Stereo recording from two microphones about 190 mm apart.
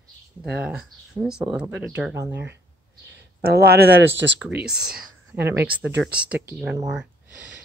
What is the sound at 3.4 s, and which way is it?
Speech, 55° right (ahead or behind).